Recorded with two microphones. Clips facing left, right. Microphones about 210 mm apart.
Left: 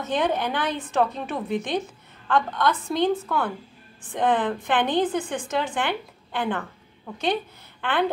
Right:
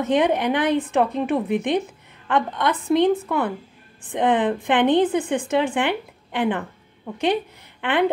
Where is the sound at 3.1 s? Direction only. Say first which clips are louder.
Right 3 dB; 10° right (ahead or behind).